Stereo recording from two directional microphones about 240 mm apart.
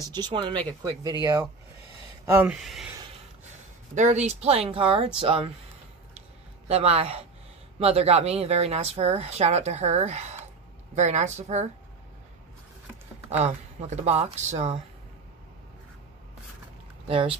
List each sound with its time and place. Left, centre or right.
0.0 s speech: centre
2.3 s speech: centre
3.9 s speech: right
6.7 s speech: right
13.4 s speech: right
17.1 s speech: right